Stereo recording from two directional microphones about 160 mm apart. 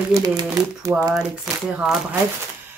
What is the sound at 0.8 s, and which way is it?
Speech, 20° right (ahead or behind).